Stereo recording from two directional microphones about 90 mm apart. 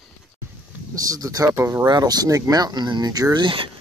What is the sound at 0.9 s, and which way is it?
Speech, 40° right (ahead or behind).